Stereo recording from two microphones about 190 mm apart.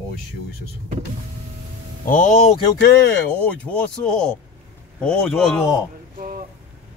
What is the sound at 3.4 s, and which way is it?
Speech, 5° left (ahead or behind).